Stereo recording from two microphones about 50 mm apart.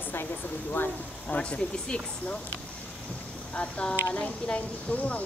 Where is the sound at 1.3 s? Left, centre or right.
Left.